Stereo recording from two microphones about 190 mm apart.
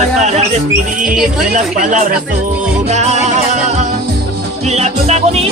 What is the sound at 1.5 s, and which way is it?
Music, 40° right (ahead or behind).